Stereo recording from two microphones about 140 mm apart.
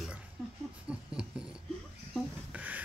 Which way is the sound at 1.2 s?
5° right (ahead or behind).